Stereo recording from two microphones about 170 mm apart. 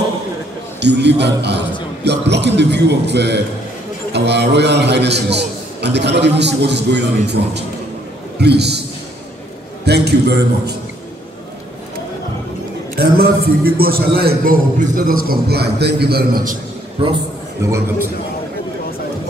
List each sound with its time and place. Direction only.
0.7 s a man's voice: 80° right
9.8 s a man's voice: 75° right (ahead or behind)
12.9 s a man's voice: 65° right (ahead or behind)
17.6 s a man's voice: 15° right (ahead or behind)